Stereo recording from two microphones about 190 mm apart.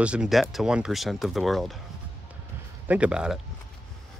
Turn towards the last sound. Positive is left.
turn(degrees=-5)  # may be behind; listen again after turning